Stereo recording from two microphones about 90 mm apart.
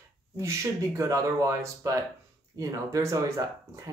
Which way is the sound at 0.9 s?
35° right (ahead or behind).